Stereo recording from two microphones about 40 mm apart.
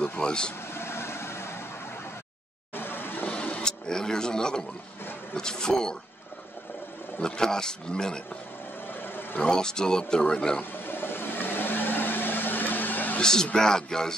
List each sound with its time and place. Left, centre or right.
0.2 s speech: left
0.7 s vehicle: left
2.7 s a sound: left
3.3 s a sound: left
3.6 s speech: centre
7.2 s speech: centre
9.0 s vehicle: left
9.5 s speech: centre
10.6 s a sound: left
13.2 s speech: centre